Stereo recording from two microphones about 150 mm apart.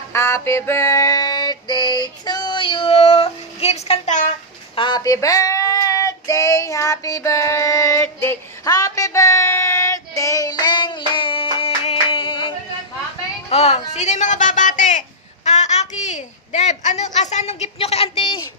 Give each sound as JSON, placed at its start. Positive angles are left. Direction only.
{"t": 0.1, "sound": "music", "side_deg": 15}
{"t": 4.7, "sound": "female singing", "side_deg": 30}
{"t": 13.5, "sound": "a sound", "side_deg": 45}